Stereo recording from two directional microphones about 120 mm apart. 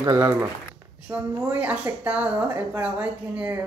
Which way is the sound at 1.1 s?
15° right (ahead or behind).